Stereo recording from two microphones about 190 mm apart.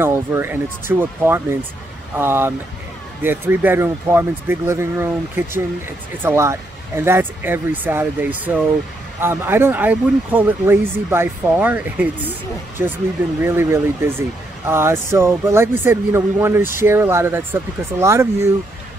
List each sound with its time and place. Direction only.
0.0 s speech: 15° right (ahead or behind)
13.4 s speech: 10° right (ahead or behind)